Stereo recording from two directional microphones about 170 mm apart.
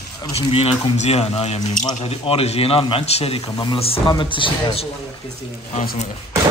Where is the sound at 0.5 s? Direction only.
35° left (ahead or behind).